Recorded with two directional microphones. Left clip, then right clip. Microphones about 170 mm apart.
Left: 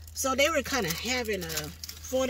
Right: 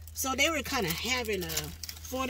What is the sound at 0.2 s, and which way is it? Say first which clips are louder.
Speech: left 3 dB; 20° right (ahead or behind).